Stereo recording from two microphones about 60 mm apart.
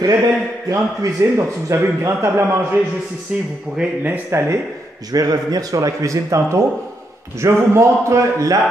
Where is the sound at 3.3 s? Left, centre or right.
Centre.